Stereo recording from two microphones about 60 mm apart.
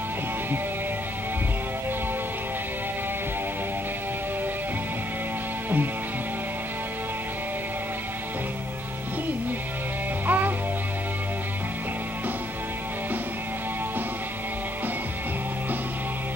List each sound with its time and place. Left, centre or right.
10.2 s music: right